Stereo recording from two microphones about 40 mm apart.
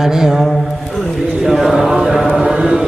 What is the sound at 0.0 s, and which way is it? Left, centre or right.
Speech, centre.